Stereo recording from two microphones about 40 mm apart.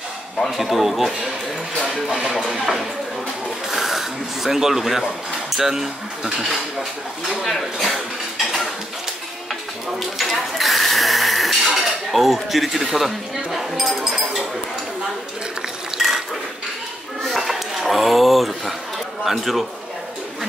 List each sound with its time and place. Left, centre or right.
0.4 s speech: centre
2.4 s speech: centre
3.7 s a sound: centre
5.6 s speech: centre
7.2 s speech: centre
9.5 s speech: centre
15.9 s mechanisms: centre
17.3 s a sound: centre
19.2 s speech: centre